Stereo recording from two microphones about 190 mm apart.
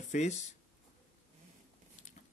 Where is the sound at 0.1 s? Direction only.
40° left (ahead or behind).